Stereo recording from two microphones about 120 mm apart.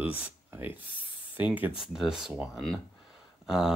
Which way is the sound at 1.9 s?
5° right (ahead or behind).